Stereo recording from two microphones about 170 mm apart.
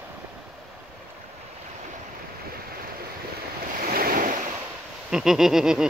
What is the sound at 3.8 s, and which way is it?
Waves, 60° right (ahead or behind).